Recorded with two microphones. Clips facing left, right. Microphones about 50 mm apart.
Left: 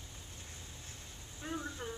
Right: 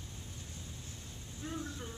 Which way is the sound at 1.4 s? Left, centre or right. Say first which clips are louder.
Left 1 dB; left.